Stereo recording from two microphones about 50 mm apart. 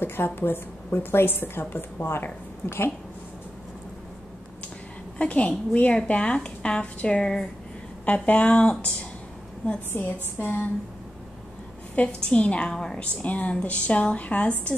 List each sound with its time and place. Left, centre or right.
0.0 s a woman's voice: left
5.2 s a woman's voice: left
8.0 s a woman's voice: left
9.9 s a woman's voice: left
11.9 s a woman's voice: left